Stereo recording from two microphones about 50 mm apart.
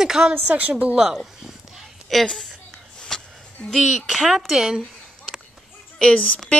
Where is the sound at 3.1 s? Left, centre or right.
Centre.